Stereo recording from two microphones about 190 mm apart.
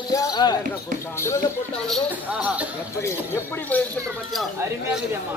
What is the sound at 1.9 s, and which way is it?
Speech, 5° right (ahead or behind).